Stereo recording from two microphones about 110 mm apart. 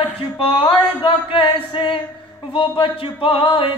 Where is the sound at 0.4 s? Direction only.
60° left (ahead or behind).